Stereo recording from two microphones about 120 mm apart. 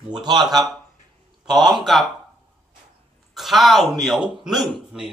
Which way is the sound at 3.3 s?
Centre (ahead or behind).